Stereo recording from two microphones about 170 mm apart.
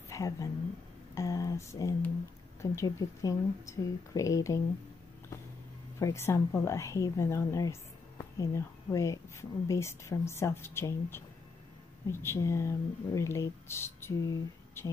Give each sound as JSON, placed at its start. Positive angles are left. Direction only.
{"t": 0.1, "sound": "a woman's voice", "side_deg": 20}
{"t": 5.9, "sound": "a woman's voice", "side_deg": 15}